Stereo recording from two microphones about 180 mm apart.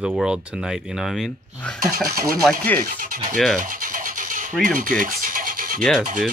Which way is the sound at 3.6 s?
50° right (ahead or behind).